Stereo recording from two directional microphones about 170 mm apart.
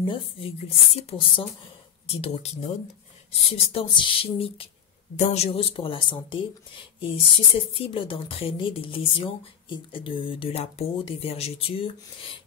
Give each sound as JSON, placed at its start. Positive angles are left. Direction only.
{"t": 0.0, "sound": "a woman's voice", "side_deg": 30}